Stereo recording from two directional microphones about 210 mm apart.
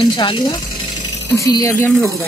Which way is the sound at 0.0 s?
20° left (ahead or behind).